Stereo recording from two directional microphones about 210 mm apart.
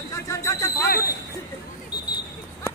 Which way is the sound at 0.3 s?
15° left (ahead or behind).